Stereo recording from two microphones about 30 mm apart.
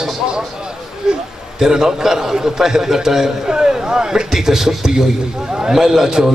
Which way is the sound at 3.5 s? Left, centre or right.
Right.